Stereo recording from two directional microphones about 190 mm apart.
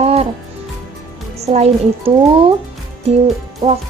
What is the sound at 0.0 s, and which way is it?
Music, 30° right (ahead or behind).